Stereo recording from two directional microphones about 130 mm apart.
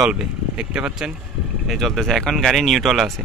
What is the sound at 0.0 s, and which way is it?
Speech, 5° right (ahead or behind).